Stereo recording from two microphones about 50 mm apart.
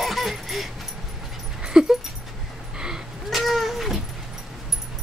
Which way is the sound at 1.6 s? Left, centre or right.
Centre.